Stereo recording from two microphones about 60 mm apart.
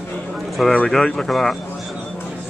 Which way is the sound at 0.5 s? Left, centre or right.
Centre.